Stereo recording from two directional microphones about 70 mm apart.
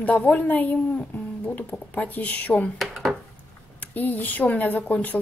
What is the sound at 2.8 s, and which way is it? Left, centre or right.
Speech, centre.